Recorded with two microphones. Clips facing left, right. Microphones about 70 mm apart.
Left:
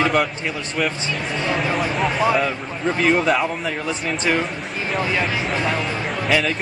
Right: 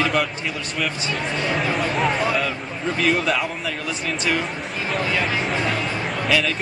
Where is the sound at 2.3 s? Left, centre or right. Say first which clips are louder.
Left 3 dB; centre.